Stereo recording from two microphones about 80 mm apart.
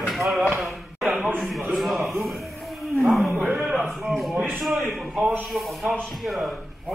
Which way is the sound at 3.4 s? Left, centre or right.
Centre.